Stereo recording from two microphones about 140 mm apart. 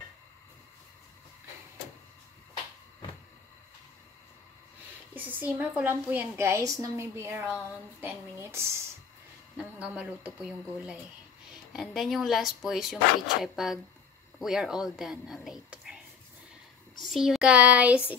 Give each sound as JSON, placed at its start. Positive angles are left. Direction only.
{"t": 5.1, "sound": "a woman's voice", "side_deg": -15}
{"t": 17.0, "sound": "a woman's voice", "side_deg": 0}